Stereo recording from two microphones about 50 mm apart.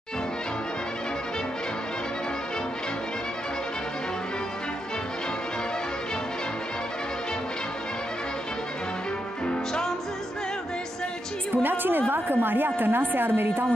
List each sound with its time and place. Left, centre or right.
9.5 s music: centre
11.5 s music: right
12.1 s a woman's voice: right